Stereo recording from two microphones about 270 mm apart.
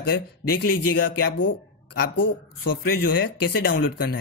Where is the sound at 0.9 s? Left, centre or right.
Left.